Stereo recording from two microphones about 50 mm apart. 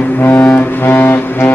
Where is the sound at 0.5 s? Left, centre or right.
Left.